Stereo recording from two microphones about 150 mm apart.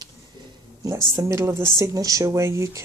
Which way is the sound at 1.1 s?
20° right (ahead or behind).